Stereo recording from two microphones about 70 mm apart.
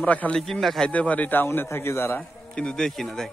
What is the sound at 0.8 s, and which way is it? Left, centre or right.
A man's voice, left.